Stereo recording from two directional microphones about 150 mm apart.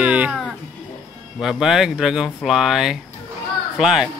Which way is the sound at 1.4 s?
5° right (ahead or behind).